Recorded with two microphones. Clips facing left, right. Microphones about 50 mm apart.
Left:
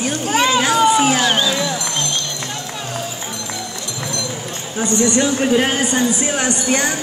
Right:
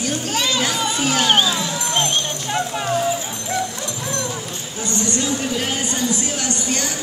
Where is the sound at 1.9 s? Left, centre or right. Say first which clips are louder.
Right 3 dB; right.